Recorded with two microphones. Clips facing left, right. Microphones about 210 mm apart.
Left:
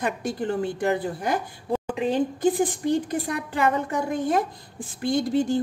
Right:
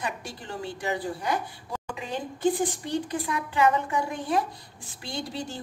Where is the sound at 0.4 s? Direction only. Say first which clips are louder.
Left 11 dB; 55° left (ahead or behind).